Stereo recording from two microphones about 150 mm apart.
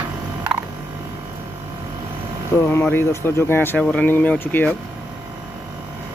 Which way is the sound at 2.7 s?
15° left (ahead or behind).